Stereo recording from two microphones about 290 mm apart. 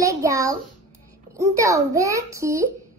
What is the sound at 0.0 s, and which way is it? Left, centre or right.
A child's voice, centre.